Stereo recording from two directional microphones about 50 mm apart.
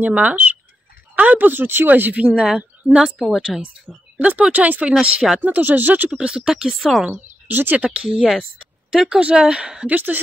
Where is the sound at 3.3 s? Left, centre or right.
Centre.